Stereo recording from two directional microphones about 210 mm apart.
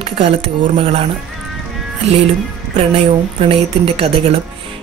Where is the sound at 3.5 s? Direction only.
30° right (ahead or behind).